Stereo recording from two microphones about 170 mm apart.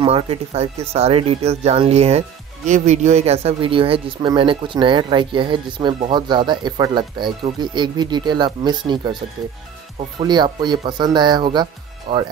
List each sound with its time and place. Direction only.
0.0 s speech: 35° right (ahead or behind)